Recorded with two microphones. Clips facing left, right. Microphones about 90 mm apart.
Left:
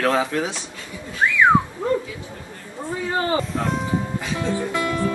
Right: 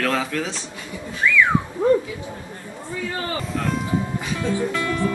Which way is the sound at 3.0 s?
30° left (ahead or behind).